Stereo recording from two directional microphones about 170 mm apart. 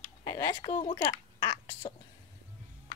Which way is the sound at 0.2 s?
20° left (ahead or behind).